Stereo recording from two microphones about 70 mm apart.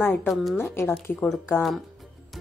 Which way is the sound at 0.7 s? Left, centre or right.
Left.